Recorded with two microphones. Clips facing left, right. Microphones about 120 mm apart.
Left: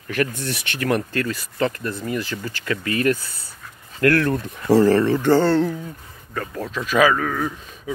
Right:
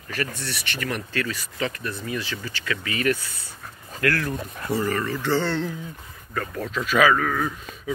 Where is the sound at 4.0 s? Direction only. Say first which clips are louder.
Left 7 dB; 60° left (ahead or behind); by 5.2 s 80° left.